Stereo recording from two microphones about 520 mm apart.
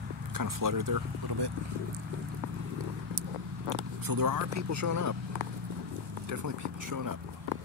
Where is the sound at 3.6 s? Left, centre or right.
Right.